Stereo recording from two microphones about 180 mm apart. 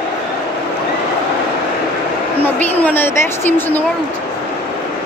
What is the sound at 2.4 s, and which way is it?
A woman's voice, 10° left (ahead or behind).